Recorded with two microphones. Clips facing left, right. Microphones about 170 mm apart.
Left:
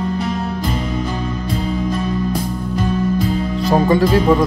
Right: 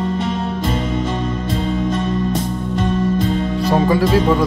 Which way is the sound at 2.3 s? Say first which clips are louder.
Right 1 dB; centre (ahead or behind).